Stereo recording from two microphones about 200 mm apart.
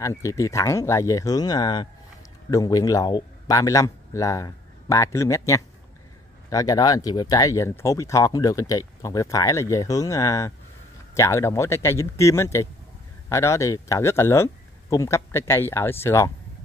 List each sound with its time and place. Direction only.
0.0 s a man's voice: 15° left (ahead or behind)